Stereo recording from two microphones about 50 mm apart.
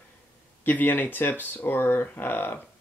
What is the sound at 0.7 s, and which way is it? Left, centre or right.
Speech, left.